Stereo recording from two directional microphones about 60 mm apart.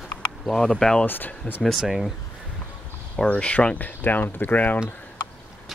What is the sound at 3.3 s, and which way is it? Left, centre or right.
Speech, centre.